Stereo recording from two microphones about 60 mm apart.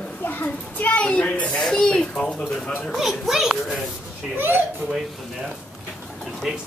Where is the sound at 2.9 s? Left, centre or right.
Centre.